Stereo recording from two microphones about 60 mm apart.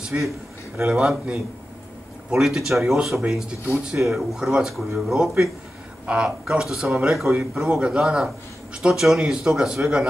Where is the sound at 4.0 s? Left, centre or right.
Centre.